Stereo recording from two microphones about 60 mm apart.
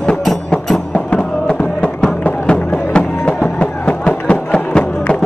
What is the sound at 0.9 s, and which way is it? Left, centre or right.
Music, centre.